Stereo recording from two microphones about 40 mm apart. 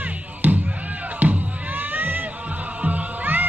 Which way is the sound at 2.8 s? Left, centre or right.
Right.